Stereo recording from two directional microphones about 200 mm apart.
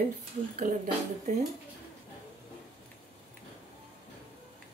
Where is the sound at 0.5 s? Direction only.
40° right (ahead or behind).